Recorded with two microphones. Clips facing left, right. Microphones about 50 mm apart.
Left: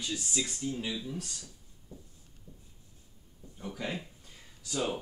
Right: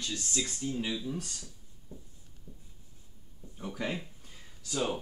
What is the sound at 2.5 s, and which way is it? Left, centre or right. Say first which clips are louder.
Writing: right 2 dB; right.